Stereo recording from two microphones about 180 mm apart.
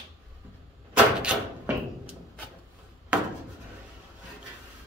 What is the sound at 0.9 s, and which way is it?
Door, 5° right (ahead or behind).